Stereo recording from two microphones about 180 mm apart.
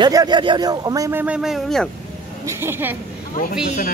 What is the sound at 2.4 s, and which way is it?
Speech, 15° right (ahead or behind).